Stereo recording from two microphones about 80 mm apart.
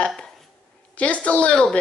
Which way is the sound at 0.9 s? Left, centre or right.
Centre.